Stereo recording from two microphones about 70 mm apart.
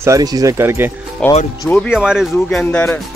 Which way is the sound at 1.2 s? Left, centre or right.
Centre.